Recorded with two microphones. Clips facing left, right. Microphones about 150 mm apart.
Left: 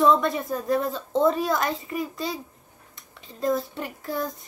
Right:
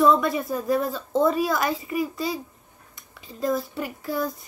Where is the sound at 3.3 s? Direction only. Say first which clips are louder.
Even; 5° right (ahead or behind).